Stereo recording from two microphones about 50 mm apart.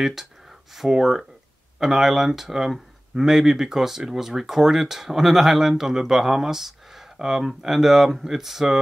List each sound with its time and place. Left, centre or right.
0.0 s speech: centre